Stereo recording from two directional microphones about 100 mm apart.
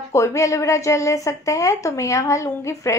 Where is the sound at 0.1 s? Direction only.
30° left (ahead or behind).